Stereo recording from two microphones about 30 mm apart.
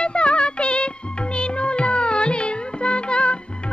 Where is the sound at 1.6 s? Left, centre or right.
Left.